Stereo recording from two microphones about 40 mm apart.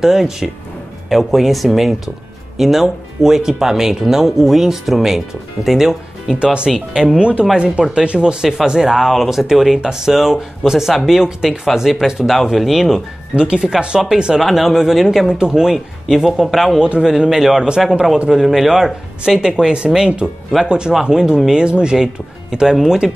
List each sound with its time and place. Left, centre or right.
0.0 s speech: centre
6.4 s speech: right; by 13.0 s centre
13.4 s speech: right
14.4 s speech: centre
15.3 s speech: centre
15.7 s speech: centre
17.0 s speech: centre